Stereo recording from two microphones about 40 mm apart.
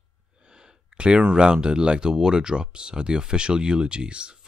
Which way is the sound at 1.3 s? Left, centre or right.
Right.